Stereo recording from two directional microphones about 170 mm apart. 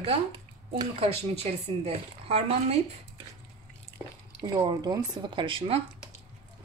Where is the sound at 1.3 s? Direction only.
40° right (ahead or behind).